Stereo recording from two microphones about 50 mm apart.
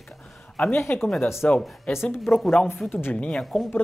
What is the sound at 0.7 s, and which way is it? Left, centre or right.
Speech, left.